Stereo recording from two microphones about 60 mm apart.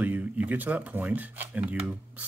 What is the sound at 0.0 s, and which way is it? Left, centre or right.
Speech, right.